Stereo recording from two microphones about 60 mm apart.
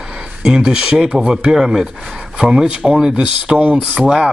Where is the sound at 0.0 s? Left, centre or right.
Centre.